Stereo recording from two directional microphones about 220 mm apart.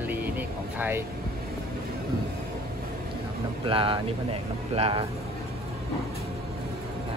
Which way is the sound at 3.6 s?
25° right (ahead or behind).